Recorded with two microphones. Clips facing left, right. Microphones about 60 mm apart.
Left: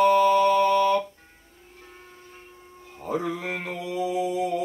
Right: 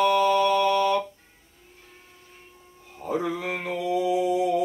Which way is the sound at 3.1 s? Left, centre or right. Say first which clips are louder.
Right 1 dB; right.